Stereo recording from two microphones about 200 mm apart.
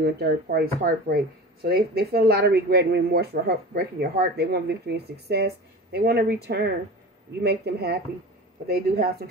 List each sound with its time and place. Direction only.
0.0 s speech: 50° right (ahead or behind)